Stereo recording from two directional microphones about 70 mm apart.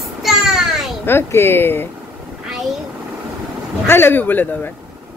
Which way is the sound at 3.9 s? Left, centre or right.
Left.